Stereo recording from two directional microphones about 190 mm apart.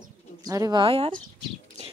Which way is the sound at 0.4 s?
20° right (ahead or behind).